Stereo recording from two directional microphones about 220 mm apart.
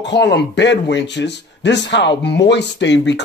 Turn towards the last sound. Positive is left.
turn(degrees=55)  # may be behind; listen again after turning